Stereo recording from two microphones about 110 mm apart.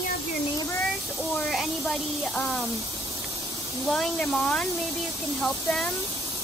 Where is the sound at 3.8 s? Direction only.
5° left (ahead or behind).